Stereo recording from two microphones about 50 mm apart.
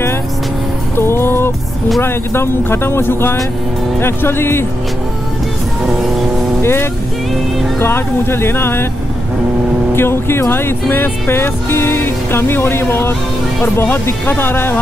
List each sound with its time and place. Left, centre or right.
0.9 s music: left
6.6 s music: left
9.9 s music: left